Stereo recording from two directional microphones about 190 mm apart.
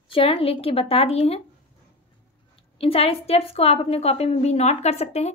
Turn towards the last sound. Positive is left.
turn(degrees=35)  # may be behind; listen again after turning